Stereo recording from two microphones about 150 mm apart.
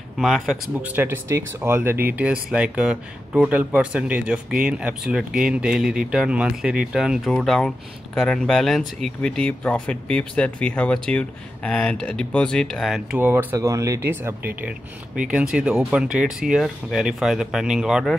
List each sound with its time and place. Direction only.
0.2 s speech: centre (ahead or behind)
13.2 s speech: 15° right (ahead or behind)